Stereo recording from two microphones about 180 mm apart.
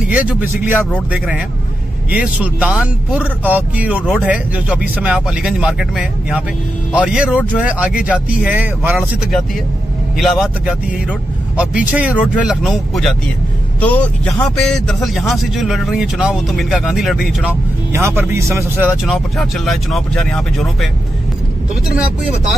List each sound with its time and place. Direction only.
0.1 s speech: 10° right (ahead or behind)
17.9 s speech: 15° right (ahead or behind)
19.0 s speech: centre (ahead or behind)